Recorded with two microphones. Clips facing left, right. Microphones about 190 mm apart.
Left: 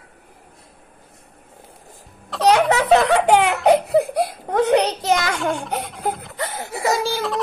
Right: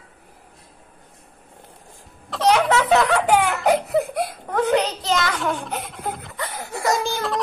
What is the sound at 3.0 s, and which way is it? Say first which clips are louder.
Laughter: left 3 dB; 25° left (ahead or behind).